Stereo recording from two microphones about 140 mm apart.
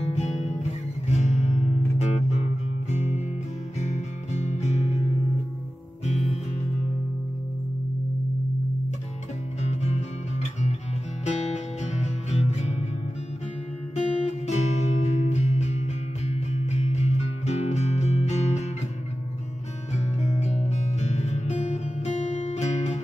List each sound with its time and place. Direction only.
0.1 s guitar: 55° left (ahead or behind)
3.8 s music: 55° left (ahead or behind)
9.6 s music: 55° left (ahead or behind)
11.2 s music: 55° left (ahead or behind)
13.9 s music: 55° left (ahead or behind)
19.9 s music: 55° left (ahead or behind)